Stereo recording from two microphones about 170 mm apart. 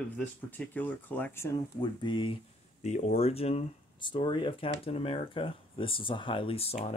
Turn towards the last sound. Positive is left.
turn(degrees=35)  # may be behind; listen again after turning